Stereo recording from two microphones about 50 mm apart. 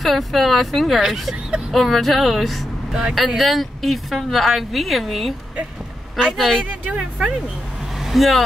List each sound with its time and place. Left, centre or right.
0.0 s speech: centre
2.9 s speech: centre
6.3 s speech: centre
6.6 s speech: right
8.0 s speech: centre